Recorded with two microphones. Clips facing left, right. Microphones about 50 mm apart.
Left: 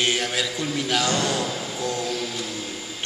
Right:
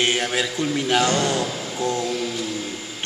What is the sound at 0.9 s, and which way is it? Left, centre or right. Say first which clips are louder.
Speech: right 3 dB; right.